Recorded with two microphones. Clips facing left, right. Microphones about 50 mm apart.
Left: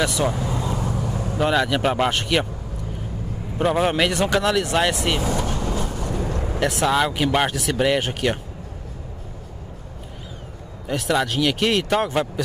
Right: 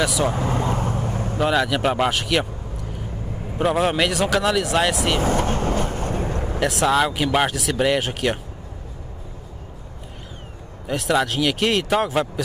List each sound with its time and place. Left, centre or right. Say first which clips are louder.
0.0 s speech: even; centre
0.3 s vehicle: right 3 dB; right
1.4 s speech: even; centre
3.5 s speech: even; centre
5.2 s vehicle: right 3 dB; right
6.4 s speech: right 1 dB; centre
10.9 s speech: right 1 dB; centre